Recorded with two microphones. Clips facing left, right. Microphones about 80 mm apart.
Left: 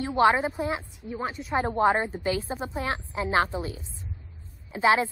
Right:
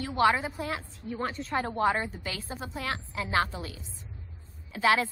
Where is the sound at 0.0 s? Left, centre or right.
Left.